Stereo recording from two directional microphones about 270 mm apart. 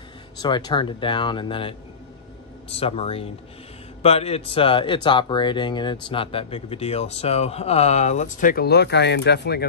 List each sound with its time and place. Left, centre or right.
0.4 s speech: centre; by 9.7 s left